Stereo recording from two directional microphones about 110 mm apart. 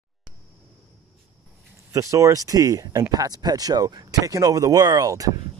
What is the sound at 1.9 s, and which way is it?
Speech, 30° right (ahead or behind).